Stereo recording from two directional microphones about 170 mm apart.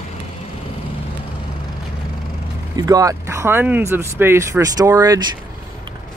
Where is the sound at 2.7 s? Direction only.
20° right (ahead or behind).